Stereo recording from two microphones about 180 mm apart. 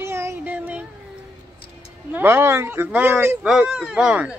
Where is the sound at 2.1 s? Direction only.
15° right (ahead or behind).